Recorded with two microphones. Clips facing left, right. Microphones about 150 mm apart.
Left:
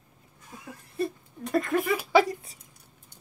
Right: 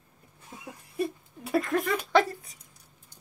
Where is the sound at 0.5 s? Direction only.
25° right (ahead or behind).